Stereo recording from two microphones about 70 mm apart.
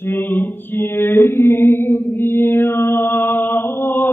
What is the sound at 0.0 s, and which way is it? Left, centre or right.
Mantra, left.